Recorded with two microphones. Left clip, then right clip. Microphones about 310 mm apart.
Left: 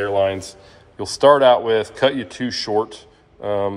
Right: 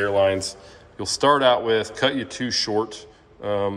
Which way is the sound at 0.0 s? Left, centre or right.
Centre.